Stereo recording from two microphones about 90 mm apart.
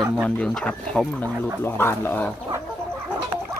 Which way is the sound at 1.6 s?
25° left (ahead or behind).